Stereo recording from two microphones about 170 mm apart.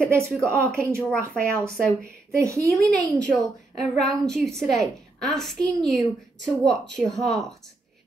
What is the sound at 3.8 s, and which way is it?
A woman's voice, centre (ahead or behind).